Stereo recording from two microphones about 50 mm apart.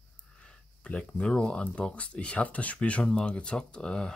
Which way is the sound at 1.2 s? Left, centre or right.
Centre.